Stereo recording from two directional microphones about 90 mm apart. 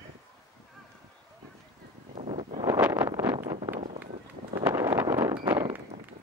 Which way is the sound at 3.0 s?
30° right (ahead or behind).